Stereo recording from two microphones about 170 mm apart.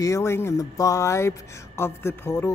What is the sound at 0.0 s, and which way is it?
Speech, 15° left (ahead or behind).